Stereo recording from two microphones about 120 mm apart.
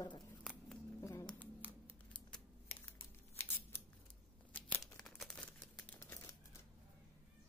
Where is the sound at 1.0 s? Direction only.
25° left (ahead or behind).